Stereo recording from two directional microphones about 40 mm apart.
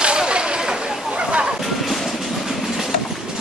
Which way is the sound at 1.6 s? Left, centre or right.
Centre.